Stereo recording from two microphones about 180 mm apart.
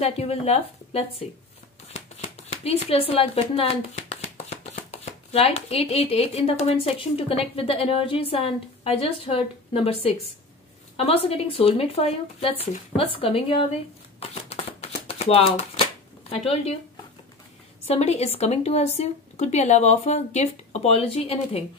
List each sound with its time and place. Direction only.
0.0 s speech: 35° left (ahead or behind)
2.0 s a sound: 40° left (ahead or behind)
5.3 s speech: 35° left (ahead or behind)
14.5 s shuffling cards: 35° left (ahead or behind)
17.8 s speech: 35° left (ahead or behind)